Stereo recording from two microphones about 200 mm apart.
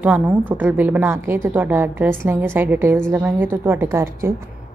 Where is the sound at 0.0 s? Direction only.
5° right (ahead or behind).